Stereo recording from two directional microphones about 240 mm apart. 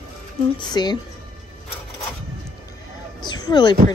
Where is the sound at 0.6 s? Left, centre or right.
Centre.